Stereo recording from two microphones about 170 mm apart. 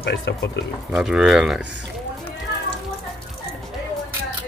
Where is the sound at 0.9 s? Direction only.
5° right (ahead or behind).